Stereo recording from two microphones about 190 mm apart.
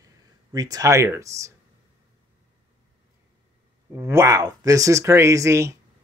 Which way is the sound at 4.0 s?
15° right (ahead or behind).